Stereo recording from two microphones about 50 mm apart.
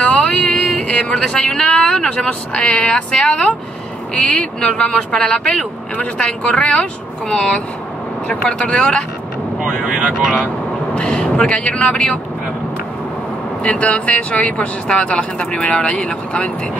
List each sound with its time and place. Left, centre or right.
0.0 s vehicle: left
0.3 s vehicle: centre
0.7 s music: left
1.1 s speech: centre
9.6 s speech: centre
11.0 s speech: centre
13.6 s speech: left